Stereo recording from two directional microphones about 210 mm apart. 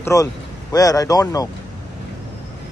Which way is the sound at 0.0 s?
15° left (ahead or behind).